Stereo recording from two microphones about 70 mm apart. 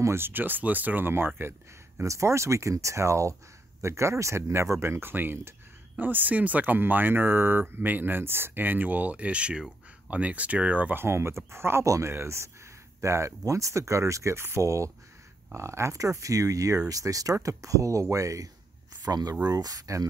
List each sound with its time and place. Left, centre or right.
0.0 s speech: right
2.0 s speech: right
11.1 s speech: right
11.8 s speech: right
12.1 s speech: right
19.0 s speech: right